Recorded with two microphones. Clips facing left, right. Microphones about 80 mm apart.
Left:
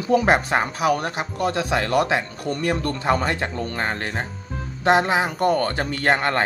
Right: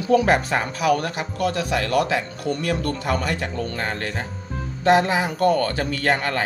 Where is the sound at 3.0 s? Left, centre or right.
Left.